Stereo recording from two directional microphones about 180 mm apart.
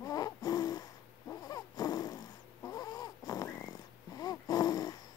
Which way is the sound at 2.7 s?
20° left (ahead or behind).